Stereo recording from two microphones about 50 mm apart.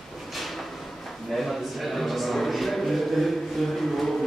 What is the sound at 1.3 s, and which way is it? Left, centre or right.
A man's voice, centre.